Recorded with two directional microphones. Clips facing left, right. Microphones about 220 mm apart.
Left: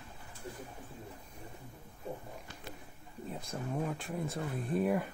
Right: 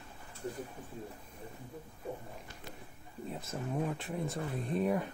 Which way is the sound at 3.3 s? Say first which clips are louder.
Right 1 dB; 5° right (ahead or behind).